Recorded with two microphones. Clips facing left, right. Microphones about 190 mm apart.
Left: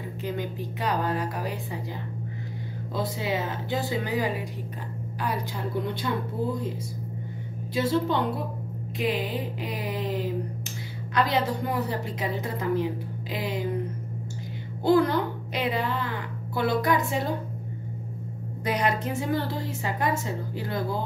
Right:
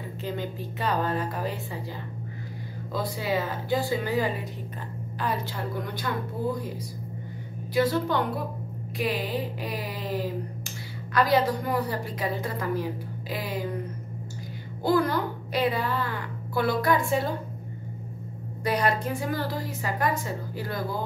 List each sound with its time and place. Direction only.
0.2 s speech: 15° left (ahead or behind)
2.9 s a woman's voice: 20° left (ahead or behind)
7.7 s a woman's voice: 25° left (ahead or behind)
14.9 s a woman's voice: 20° left (ahead or behind)
18.6 s a woman's voice: 20° left (ahead or behind)